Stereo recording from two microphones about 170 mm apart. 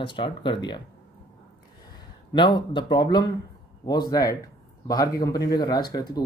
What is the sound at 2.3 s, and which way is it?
Speech, 25° left (ahead or behind).